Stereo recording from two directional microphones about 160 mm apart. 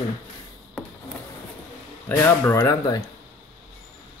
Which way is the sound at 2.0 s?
15° left (ahead or behind).